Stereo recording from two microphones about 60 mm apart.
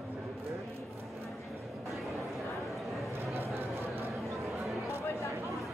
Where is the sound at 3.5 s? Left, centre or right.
Right.